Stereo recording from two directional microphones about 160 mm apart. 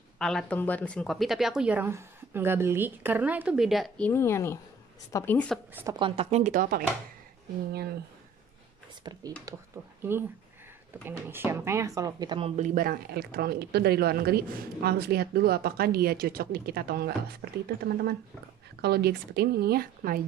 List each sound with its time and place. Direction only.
0.2 s speech: 5° left (ahead or behind)
4.1 s speech: 15° left (ahead or behind)
5.9 s speech: 30° right (ahead or behind); by 6.8 s 60° right (ahead or behind)
9.0 s speech: 25° right (ahead or behind)
11.1 s speech: 15° right (ahead or behind); by 18.1 s 75° right (ahead or behind)
18.8 s speech: 90° right; by 20.2 s 65° right (ahead or behind)